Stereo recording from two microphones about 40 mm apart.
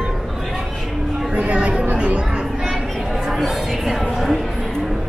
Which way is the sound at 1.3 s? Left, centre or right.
Right.